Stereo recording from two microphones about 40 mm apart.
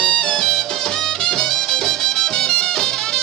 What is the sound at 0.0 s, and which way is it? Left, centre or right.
Music, centre.